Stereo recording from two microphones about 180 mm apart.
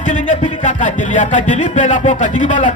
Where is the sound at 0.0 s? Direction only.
40° left (ahead or behind).